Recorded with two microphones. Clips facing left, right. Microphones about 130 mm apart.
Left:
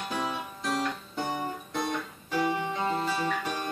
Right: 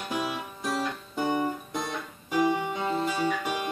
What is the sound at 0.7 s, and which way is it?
Guitar, 10° right (ahead or behind).